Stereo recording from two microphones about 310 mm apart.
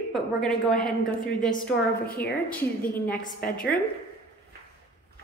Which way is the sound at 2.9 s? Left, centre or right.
Centre.